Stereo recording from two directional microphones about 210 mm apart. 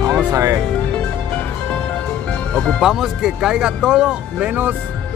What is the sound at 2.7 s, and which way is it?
Speech, centre (ahead or behind).